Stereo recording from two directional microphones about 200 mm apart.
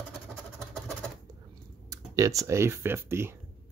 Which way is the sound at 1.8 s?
15° right (ahead or behind).